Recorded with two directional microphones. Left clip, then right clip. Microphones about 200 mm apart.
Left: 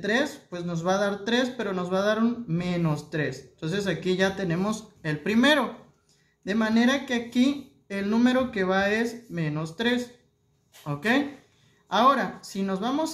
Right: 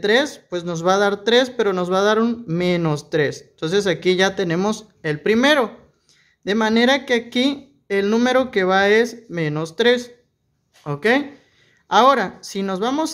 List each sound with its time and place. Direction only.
0.0 s speech: 50° right (ahead or behind)